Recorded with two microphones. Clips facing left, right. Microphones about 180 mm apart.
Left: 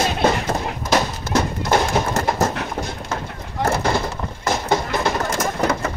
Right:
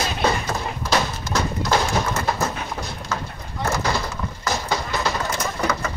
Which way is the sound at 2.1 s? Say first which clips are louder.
Left 4 dB; 45° left (ahead or behind).